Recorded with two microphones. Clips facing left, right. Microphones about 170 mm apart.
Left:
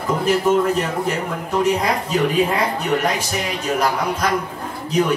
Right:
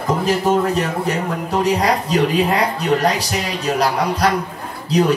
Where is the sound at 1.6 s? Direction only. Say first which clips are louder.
Right 1 dB; 35° right (ahead or behind).